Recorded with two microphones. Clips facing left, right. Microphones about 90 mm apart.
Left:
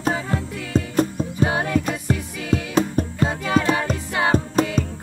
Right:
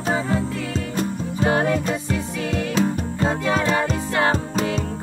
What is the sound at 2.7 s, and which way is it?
Music, 45° left (ahead or behind).